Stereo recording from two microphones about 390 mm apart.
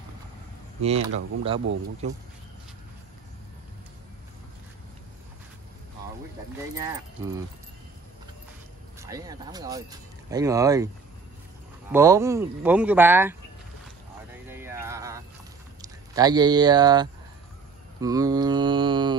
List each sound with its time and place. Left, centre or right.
0.8 s speech: centre
9.0 s speech: centre
11.9 s speech: centre
14.5 s a sound: centre
15.8 s speech: centre